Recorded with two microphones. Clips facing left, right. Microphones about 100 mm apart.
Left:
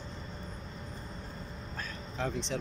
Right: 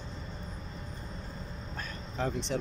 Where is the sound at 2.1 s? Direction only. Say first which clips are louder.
Right 2 dB; 5° right (ahead or behind).